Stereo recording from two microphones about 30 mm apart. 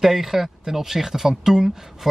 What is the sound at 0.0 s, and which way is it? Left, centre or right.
Speech, centre.